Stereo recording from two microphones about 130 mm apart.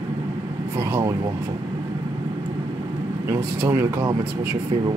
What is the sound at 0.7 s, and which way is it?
Speech, 20° right (ahead or behind).